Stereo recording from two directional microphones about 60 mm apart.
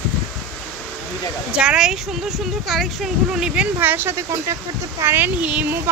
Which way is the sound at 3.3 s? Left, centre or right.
Centre.